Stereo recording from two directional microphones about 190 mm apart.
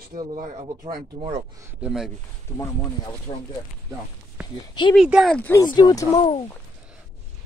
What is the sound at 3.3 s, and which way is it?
Speech, 25° left (ahead or behind).